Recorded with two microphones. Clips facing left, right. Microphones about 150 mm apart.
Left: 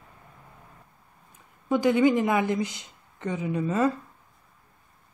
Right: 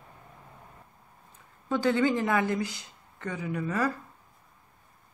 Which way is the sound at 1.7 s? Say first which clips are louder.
Left 4 dB; 15° left (ahead or behind).